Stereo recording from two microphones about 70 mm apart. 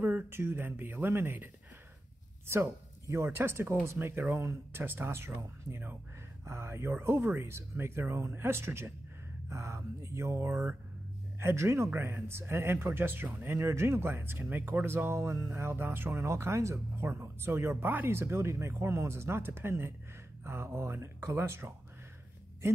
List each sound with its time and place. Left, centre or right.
0.0 s speech: right
11.3 s speech: right
15.5 s speech: right